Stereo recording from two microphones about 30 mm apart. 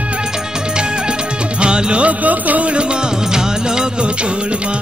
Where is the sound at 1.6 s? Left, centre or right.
Right.